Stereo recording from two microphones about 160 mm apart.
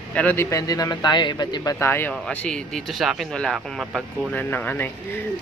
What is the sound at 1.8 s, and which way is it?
Speech, 15° left (ahead or behind).